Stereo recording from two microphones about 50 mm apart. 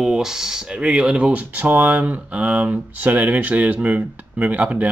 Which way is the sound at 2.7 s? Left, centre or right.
Right.